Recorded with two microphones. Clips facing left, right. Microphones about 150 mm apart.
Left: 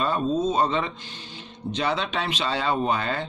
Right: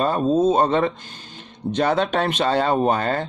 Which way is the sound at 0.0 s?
45° right (ahead or behind).